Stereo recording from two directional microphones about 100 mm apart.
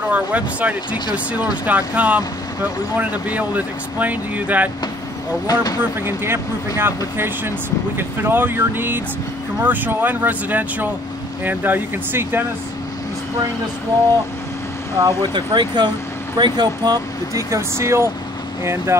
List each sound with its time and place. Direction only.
0.1 s speech: 15° right (ahead or behind)
5.5 s speech: 40° left (ahead or behind)
5.8 s speech: 20° right (ahead or behind)
15.0 s speech: 50° right (ahead or behind); by 18.9 s 30° right (ahead or behind)